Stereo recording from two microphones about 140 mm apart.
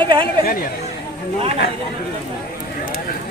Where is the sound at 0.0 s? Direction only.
35° right (ahead or behind).